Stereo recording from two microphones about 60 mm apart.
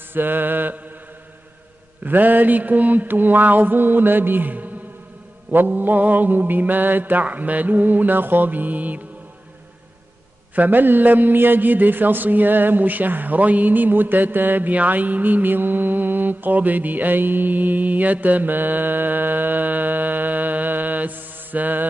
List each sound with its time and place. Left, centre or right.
0.1 s a man's voice: right
2.0 s a man's voice: right
10.5 s a man's voice: right